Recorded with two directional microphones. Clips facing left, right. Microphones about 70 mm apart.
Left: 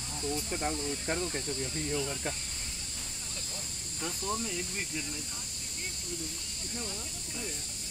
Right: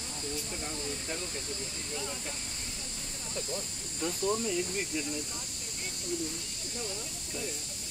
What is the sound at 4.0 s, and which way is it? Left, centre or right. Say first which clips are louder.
Speech: right 4 dB; centre.